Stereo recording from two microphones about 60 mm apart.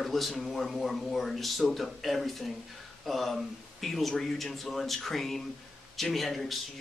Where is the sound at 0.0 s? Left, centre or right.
Centre.